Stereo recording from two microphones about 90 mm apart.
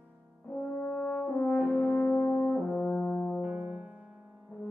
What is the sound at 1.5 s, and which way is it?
French horn, 10° right (ahead or behind).